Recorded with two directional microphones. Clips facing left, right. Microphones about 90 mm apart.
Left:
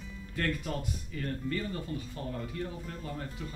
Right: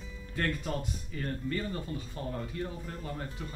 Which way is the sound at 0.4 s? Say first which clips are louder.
Even; 30° right (ahead or behind).